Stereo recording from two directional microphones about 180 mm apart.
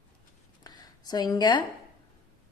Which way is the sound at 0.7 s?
20° left (ahead or behind).